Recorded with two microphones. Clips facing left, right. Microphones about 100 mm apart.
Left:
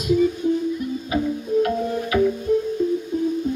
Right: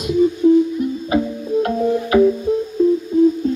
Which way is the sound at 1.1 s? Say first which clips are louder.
Right 1 dB; 40° right (ahead or behind).